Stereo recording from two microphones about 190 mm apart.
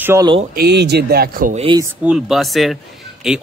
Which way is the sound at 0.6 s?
60° right (ahead or behind).